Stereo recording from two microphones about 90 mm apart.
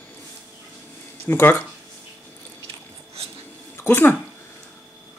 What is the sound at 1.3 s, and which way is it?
Speech, 25° left (ahead or behind).